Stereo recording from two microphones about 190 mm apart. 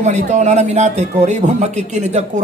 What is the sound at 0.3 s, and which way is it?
Speech, 35° right (ahead or behind).